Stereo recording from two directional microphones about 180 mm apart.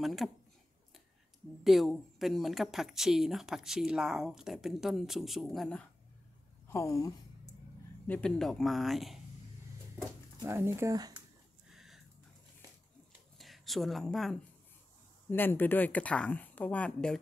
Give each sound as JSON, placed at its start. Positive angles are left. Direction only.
{"t": 0.0, "sound": "speech", "side_deg": 0}
{"t": 1.6, "sound": "speech", "side_deg": 0}
{"t": 6.7, "sound": "a sound", "side_deg": 15}
{"t": 8.1, "sound": "speech", "side_deg": 5}
{"t": 10.4, "sound": "speech", "side_deg": -15}
{"t": 11.7, "sound": "a sound", "side_deg": 0}
{"t": 13.4, "sound": "speech", "side_deg": 0}